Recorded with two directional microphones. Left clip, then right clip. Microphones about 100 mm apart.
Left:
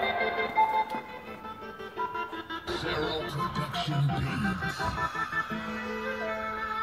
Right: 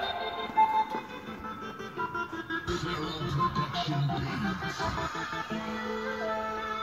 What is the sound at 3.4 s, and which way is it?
Music, 35° left (ahead or behind).